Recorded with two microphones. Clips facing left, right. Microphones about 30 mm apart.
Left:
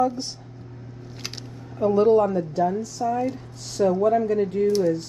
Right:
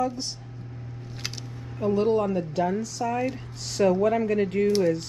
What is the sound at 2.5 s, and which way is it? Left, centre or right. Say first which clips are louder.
Speech: left 3 dB; right.